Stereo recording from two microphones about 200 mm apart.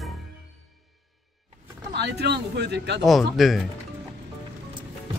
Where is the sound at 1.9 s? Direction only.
55° right (ahead or behind).